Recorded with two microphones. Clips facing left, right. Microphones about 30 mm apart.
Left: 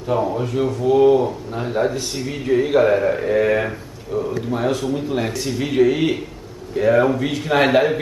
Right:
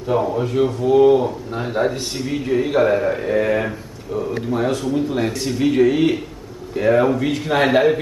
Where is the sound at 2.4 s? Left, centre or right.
Centre.